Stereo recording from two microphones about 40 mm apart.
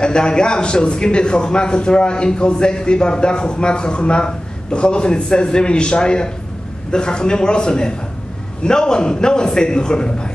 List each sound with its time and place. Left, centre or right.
0.0 s a man's voice: left